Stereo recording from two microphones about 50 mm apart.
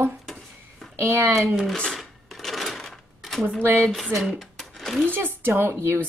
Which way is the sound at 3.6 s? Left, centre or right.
Right.